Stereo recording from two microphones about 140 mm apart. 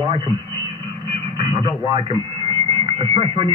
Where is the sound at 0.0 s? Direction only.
40° right (ahead or behind).